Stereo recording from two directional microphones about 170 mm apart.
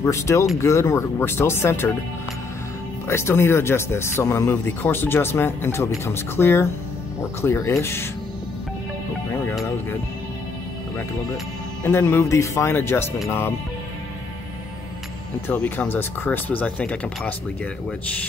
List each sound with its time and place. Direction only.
0.0 s speech: 15° left (ahead or behind)
3.1 s speech: 15° left (ahead or behind)
11.8 s speech: 15° left (ahead or behind)
15.4 s speech: 10° left (ahead or behind)